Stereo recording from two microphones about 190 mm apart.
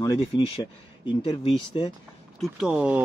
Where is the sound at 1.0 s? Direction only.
25° left (ahead or behind).